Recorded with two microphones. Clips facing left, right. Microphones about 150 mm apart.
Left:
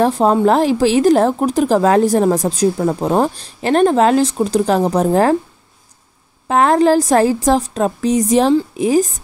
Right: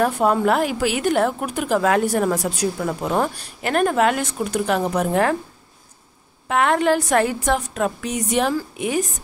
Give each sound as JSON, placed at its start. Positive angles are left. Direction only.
{"t": 0.0, "sound": "a woman's voice", "side_deg": 30}
{"t": 6.4, "sound": "a woman's voice", "side_deg": 35}